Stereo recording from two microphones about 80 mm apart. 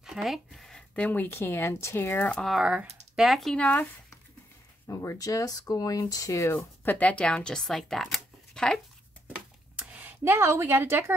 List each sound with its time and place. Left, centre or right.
0.0 s a sound: centre
1.0 s speech: left
2.3 s speech: centre
2.6 s speech: centre
3.3 s speech: centre
3.5 s speech: centre
4.8 s speech: left
6.4 s speech: left; by 8.8 s centre
9.8 s speech: right